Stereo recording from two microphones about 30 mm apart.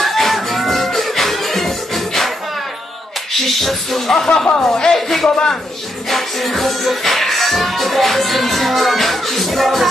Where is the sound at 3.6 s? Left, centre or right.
Centre.